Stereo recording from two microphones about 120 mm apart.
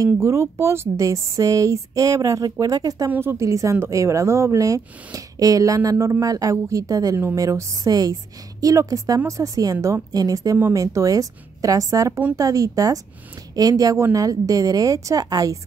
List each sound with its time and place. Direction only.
0.0 s speech: 25° right (ahead or behind)
3.1 s speech: 20° right (ahead or behind)